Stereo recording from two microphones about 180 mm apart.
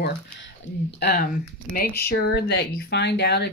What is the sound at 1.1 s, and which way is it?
Speech, 50° left (ahead or behind).